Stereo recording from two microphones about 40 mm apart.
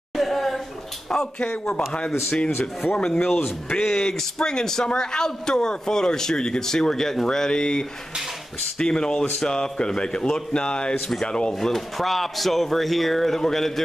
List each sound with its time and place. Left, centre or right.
0.1 s a sound: centre
1.1 s a man's voice: centre
1.9 s speech: left
2.8 s speech: left
3.8 s a man's voice: centre
11.7 s speech: centre